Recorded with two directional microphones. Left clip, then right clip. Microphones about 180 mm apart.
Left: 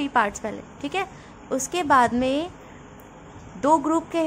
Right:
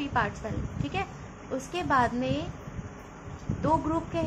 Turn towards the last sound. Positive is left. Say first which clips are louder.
# left 7 dB
turn(degrees=45)  # may be behind; listen again after turning